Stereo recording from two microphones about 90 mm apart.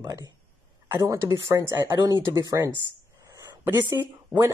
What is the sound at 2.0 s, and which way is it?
Speech, 40° right (ahead or behind).